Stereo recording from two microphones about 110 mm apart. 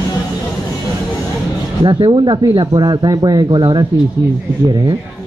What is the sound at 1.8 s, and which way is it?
Speech, 50° right (ahead or behind).